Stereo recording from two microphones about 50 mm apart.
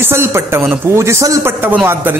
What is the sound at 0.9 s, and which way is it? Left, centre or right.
Speech, right.